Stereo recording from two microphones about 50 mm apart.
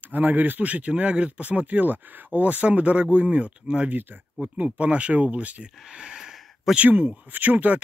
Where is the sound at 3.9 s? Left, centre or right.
Right.